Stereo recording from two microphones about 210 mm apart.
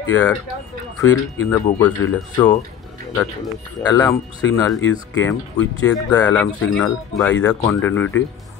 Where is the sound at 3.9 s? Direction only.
15° left (ahead or behind).